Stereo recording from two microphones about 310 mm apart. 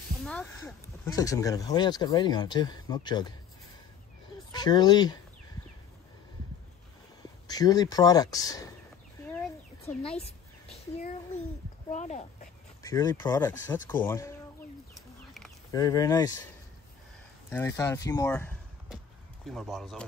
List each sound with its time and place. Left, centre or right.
0.2 s speech: centre
4.5 s speech: centre
7.4 s speech: centre
9.3 s a sound: centre
11.9 s speech: left
12.8 s speech: centre
15.7 s speech: centre
17.5 s speech: centre